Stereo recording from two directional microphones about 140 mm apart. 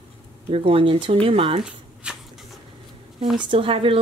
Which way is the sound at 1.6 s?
5° right (ahead or behind).